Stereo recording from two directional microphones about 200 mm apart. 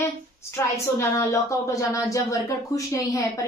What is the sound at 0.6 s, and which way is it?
A woman's voice, 15° left (ahead or behind).